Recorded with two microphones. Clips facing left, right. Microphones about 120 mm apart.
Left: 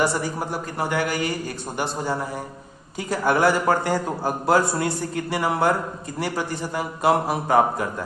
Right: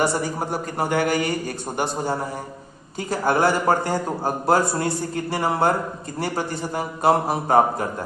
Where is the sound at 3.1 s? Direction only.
35° right (ahead or behind).